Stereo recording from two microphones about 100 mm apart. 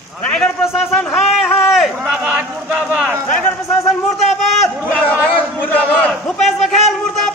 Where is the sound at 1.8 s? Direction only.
10° right (ahead or behind).